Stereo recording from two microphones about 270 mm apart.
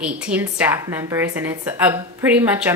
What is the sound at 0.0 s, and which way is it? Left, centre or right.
A woman's voice, centre.